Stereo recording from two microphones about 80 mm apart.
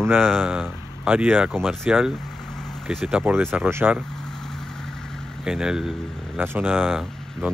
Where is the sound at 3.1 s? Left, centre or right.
Right.